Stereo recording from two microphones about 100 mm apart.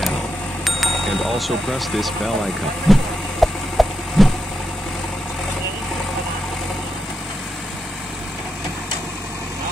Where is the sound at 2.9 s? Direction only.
Centre (ahead or behind).